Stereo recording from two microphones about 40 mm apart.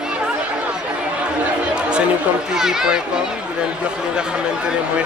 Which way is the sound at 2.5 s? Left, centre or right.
Centre.